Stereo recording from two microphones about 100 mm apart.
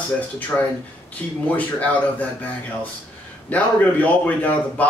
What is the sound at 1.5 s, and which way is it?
Speech, 15° left (ahead or behind).